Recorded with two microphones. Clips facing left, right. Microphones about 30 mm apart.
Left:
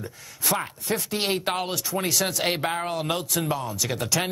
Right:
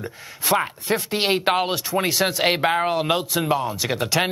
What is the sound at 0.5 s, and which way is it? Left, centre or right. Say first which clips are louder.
Speech: right 6 dB; right.